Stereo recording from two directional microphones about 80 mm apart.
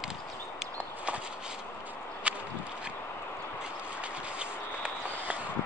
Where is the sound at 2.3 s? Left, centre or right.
Centre.